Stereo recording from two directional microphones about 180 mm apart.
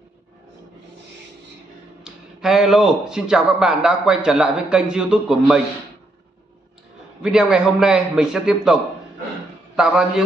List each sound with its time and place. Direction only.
2.0 s speech: 5° right (ahead or behind)
7.2 s speech: 5° right (ahead or behind)